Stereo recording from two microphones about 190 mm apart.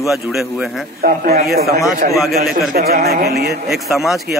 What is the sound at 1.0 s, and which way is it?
Speech, 50° right (ahead or behind).